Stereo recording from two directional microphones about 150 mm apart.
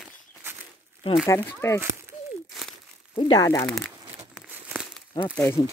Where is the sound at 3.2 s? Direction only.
30° left (ahead or behind).